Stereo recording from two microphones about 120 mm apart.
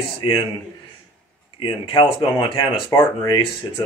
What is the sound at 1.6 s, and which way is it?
Speech, 40° left (ahead or behind).